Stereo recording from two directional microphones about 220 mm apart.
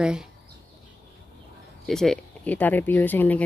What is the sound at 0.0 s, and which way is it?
Speech, 5° right (ahead or behind).